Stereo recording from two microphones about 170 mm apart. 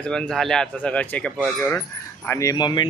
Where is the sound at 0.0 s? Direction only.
5° left (ahead or behind).